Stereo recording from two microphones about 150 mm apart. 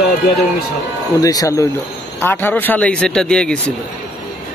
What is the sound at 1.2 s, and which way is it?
Speech, 25° left (ahead or behind).